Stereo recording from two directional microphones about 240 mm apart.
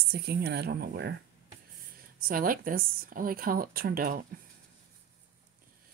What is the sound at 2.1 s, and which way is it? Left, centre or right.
Speech, right.